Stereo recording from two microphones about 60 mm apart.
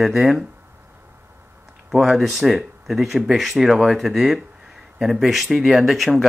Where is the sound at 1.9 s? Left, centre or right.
Centre.